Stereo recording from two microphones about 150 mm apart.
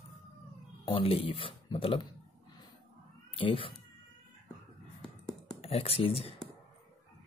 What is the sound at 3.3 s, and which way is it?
Speech, 35° left (ahead or behind).